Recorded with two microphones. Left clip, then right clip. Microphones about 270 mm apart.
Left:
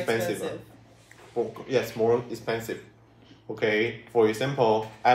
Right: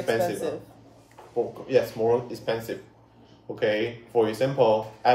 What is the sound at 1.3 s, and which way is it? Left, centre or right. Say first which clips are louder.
Speech: right 1 dB; centre.